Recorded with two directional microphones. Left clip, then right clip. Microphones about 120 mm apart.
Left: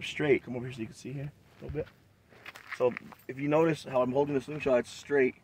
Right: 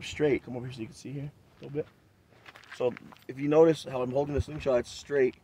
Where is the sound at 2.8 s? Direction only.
15° right (ahead or behind).